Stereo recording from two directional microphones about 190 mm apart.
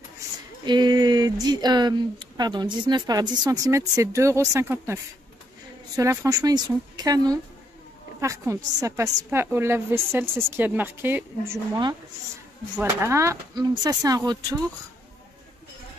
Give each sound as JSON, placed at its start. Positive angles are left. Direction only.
{"t": 0.7, "sound": "a woman's voice", "side_deg": -20}